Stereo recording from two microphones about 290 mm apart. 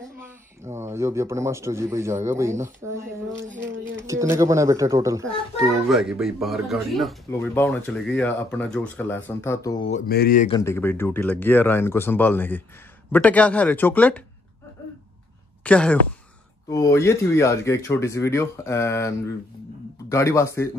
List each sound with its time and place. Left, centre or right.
0.7 s speech: centre
9.8 s a sound: left
10.5 s speech: centre
15.6 s speech: centre